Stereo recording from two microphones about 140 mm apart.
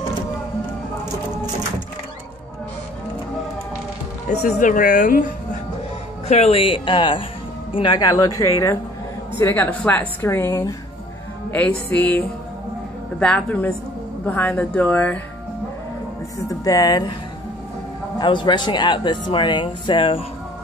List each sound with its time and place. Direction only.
4.3 s speech: 55° left (ahead or behind); by 5.6 s 70° left (ahead or behind)
6.2 s a woman's voice: 50° left (ahead or behind); by 8.7 s 25° left (ahead or behind)
9.4 s a woman's voice: 15° left (ahead or behind)
11.5 s a woman's voice: 10° left (ahead or behind)
13.2 s a woman's voice: 10° left (ahead or behind)
16.6 s speech: 25° left (ahead or behind)
18.2 s a woman's voice: 35° left (ahead or behind)